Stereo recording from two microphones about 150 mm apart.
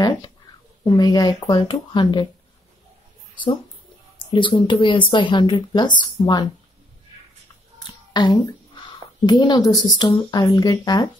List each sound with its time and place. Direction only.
0.8 s speech: 30° left (ahead or behind)
4.3 s a woman's voice: 30° left (ahead or behind)
7.8 s a sound: 30° left (ahead or behind)
9.9 s speech: 30° left (ahead or behind)